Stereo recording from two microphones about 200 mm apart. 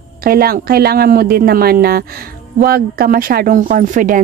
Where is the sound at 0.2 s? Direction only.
45° right (ahead or behind).